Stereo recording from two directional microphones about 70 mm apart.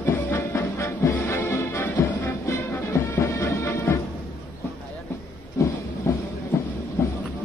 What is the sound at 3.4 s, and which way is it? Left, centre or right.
Music, left.